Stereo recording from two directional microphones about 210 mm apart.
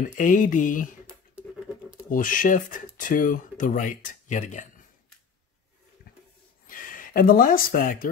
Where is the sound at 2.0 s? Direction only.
40° left (ahead or behind).